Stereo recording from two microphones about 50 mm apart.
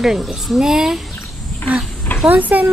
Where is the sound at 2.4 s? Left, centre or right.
Right.